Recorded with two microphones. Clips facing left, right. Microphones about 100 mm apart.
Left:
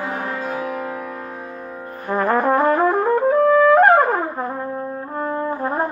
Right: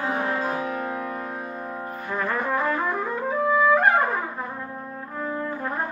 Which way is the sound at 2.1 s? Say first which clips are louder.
Left 9 dB; 45° left (ahead or behind).